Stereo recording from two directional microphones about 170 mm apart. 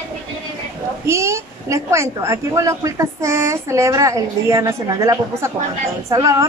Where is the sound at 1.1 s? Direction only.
15° right (ahead or behind).